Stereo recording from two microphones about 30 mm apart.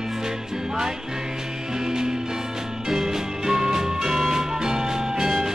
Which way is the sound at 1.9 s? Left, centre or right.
Centre.